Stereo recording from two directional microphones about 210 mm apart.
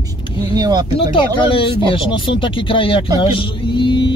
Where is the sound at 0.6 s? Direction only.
20° right (ahead or behind).